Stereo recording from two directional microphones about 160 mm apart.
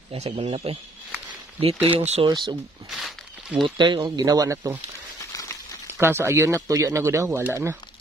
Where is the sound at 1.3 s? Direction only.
35° right (ahead or behind).